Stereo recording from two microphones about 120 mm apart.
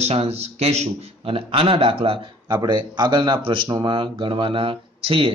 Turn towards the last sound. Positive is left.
turn(degrees=-50)  # may be behind; listen again after turning